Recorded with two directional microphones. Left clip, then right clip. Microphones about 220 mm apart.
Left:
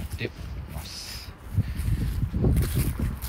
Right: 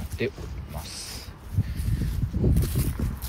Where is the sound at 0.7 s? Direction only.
30° right (ahead or behind).